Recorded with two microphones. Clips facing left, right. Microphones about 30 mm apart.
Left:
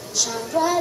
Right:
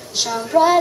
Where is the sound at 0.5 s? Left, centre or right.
Right.